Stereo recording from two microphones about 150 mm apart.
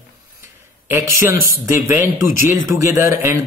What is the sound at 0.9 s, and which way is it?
A man's voice, 15° right (ahead or behind).